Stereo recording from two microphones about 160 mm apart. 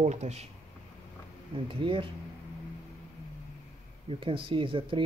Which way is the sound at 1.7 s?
35° right (ahead or behind).